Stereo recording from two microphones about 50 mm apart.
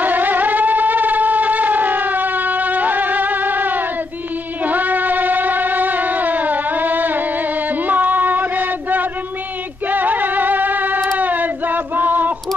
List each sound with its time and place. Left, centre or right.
0.0 s shofar: right
4.6 s music: right
11.1 s a sound: right